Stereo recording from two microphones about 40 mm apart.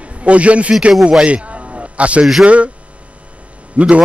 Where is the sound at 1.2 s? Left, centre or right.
Right.